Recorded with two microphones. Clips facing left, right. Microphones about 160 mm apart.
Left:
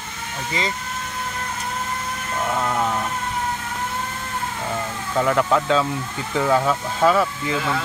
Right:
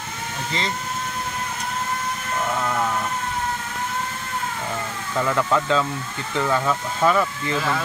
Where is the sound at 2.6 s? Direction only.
10° left (ahead or behind).